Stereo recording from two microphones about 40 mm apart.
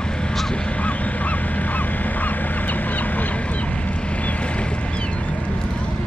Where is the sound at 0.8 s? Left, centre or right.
Left.